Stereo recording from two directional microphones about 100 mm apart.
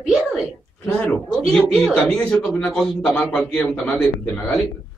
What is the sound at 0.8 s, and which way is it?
Speech, 15° left (ahead or behind).